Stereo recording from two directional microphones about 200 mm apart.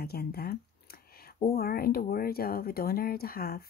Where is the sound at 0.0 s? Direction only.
50° left (ahead or behind).